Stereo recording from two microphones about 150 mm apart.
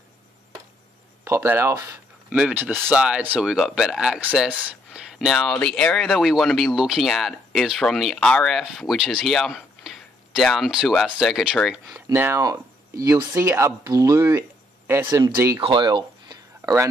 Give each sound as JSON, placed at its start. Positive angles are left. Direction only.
{"t": 1.2, "sound": "speech", "side_deg": -15}
{"t": 12.1, "sound": "speech", "side_deg": -15}
{"t": 15.6, "sound": "a sound", "side_deg": -30}